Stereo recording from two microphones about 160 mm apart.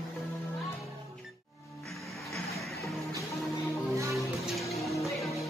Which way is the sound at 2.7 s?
20° left (ahead or behind).